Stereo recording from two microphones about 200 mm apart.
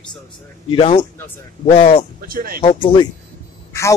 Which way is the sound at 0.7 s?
25° left (ahead or behind).